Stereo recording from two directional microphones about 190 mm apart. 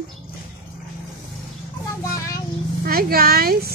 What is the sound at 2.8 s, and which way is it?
Speech, 50° right (ahead or behind).